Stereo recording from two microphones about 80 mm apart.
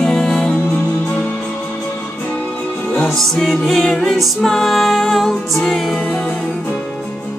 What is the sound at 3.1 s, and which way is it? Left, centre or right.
Music, centre.